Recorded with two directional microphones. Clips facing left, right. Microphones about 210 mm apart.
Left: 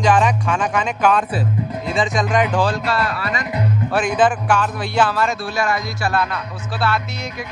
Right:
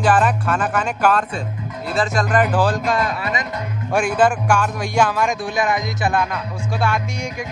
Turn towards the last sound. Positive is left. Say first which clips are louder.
# even
turn(degrees=-15)  # may be behind; listen again after turning